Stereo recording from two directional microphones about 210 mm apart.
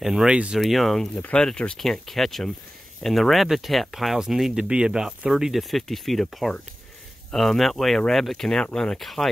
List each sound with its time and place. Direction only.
0.0 s speech: centre (ahead or behind)